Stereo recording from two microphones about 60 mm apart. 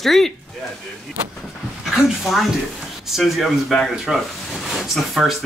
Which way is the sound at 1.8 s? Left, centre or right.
Centre.